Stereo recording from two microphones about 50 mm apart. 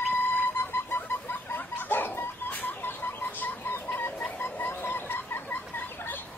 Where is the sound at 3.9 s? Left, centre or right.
Left.